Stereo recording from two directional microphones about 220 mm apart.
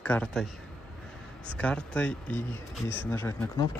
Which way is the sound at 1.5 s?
5° left (ahead or behind).